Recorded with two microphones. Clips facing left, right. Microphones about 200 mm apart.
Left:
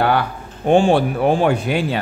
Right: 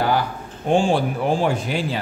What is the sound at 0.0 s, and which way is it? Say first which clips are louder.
Speech: left 3 dB; 65° left (ahead or behind).